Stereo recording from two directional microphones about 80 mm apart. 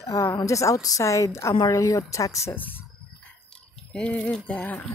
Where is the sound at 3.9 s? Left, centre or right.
Centre.